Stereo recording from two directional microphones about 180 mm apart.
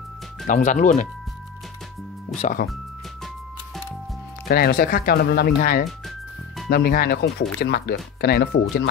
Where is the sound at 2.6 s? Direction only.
55° left (ahead or behind).